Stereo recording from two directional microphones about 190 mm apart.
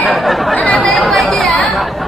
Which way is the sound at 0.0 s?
Centre (ahead or behind).